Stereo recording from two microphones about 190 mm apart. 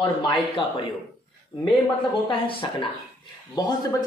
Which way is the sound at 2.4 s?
30° left (ahead or behind).